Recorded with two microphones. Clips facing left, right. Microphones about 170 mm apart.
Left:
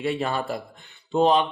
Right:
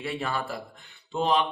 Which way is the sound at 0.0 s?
25° left (ahead or behind).